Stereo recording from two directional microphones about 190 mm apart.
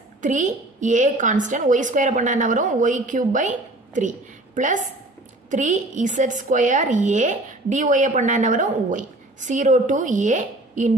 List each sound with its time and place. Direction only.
0.2 s a woman's voice: 40° right (ahead or behind)
5.5 s a woman's voice: 40° right (ahead or behind)